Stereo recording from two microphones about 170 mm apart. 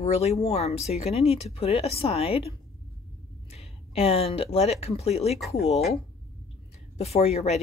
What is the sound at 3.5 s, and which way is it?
Speech, 35° left (ahead or behind).